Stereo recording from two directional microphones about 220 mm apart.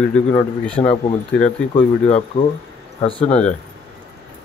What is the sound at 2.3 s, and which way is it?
Speech, 25° left (ahead or behind).